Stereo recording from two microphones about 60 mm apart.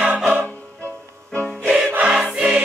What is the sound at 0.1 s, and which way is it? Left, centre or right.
Music, right.